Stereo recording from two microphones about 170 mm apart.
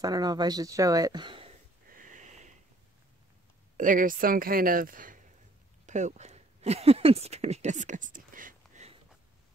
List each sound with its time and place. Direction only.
0.0 s speech: 20° right (ahead or behind)
1.9 s a sound: 50° right (ahead or behind)
3.7 s speech: 50° right (ahead or behind)